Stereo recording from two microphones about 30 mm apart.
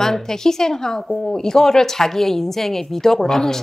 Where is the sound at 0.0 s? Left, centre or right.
Centre.